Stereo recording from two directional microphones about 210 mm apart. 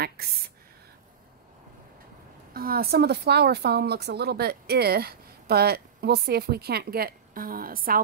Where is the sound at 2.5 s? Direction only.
45° right (ahead or behind).